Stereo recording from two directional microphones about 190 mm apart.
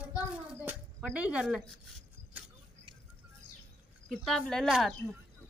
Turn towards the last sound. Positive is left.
turn(degrees=0)  # may be behind; listen again after turning